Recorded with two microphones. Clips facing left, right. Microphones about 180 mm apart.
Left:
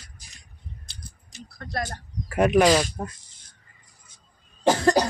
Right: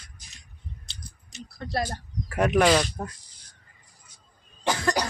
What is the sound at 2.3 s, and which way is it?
Speech, 10° left (ahead or behind).